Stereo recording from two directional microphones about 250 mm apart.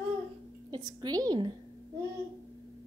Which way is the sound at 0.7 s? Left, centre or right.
Centre.